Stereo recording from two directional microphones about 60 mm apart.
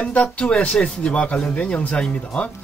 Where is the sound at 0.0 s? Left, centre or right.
Left.